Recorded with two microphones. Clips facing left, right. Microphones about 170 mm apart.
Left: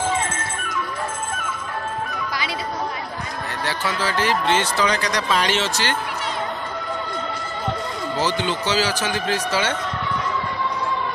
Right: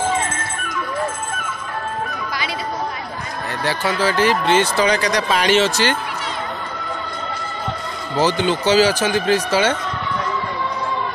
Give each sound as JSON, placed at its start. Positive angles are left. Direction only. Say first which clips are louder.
{"t": 3.6, "sound": "speech", "louder": "right 6 dB", "side_deg": -10}
{"t": 8.2, "sound": "speech", "louder": "right 6 dB", "side_deg": -15}